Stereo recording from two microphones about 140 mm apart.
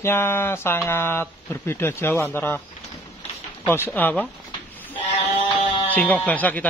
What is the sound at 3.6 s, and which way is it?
Speech, 15° left (ahead or behind).